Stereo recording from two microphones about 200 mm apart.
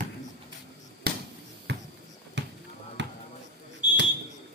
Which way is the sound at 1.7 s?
55° right (ahead or behind).